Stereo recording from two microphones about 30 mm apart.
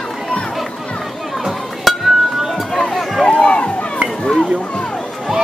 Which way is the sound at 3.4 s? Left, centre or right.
Left.